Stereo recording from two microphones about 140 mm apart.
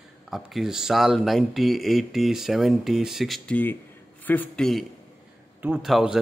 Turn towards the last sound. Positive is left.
turn(degrees=-5)  # may be behind; listen again after turning